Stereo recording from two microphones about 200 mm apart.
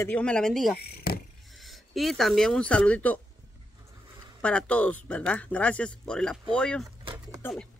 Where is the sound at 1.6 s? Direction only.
Centre (ahead or behind).